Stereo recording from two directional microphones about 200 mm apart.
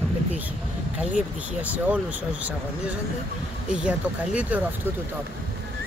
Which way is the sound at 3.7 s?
5° right (ahead or behind).